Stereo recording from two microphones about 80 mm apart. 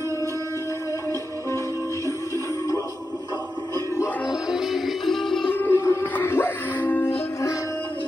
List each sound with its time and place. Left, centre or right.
2.0 s music: left
4.3 s music: centre
5.5 s music: left